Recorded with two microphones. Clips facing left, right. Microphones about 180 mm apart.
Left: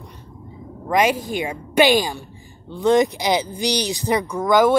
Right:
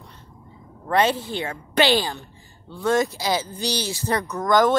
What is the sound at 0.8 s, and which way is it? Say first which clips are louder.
A woman's voice: left 2 dB; 10° left (ahead or behind).